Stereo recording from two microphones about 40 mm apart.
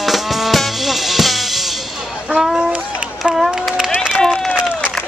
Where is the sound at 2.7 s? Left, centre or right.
Right.